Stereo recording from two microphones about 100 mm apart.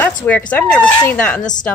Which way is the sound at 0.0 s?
15° left (ahead or behind).